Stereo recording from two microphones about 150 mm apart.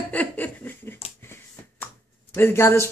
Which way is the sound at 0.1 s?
10° left (ahead or behind).